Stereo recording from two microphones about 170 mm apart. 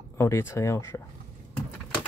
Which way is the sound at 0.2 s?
15° left (ahead or behind).